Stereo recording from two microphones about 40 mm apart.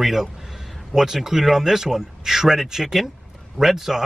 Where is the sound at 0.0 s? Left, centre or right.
Centre.